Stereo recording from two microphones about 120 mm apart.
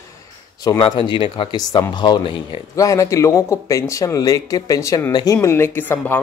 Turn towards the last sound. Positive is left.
turn(degrees=15)  # may be behind; listen again after turning